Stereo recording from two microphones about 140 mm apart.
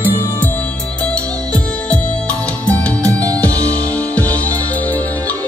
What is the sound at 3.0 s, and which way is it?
Music, 25° right (ahead or behind).